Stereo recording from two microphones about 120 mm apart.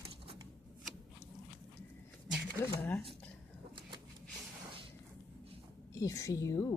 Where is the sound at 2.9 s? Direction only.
Centre (ahead or behind).